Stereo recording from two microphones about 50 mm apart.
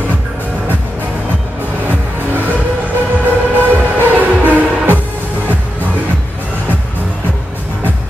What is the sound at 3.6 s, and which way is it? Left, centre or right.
Music, right.